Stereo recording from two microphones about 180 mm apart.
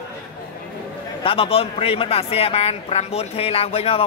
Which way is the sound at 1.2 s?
30° left (ahead or behind).